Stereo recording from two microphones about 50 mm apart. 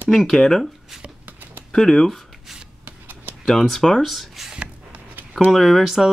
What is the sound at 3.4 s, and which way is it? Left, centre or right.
Speech, centre.